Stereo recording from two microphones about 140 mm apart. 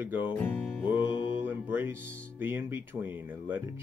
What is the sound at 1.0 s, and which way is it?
Mantra, 35° left (ahead or behind).